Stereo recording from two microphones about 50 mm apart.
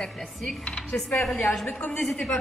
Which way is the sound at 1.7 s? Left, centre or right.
Left.